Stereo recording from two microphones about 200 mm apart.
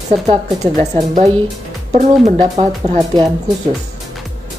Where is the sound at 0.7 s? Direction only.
35° right (ahead or behind).